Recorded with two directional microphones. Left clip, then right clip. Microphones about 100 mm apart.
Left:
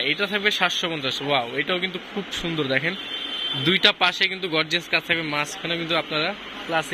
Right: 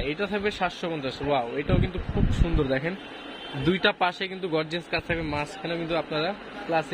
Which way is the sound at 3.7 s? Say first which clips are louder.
Left 4 dB; 25° right (ahead or behind).